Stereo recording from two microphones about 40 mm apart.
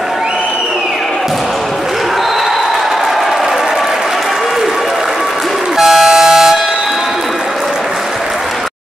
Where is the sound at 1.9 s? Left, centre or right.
Centre.